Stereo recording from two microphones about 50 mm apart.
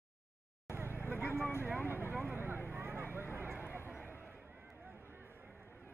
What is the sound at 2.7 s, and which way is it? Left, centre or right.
Vehicle, right.